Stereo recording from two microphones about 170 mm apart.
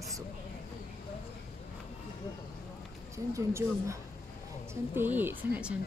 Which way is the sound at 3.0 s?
15° right (ahead or behind).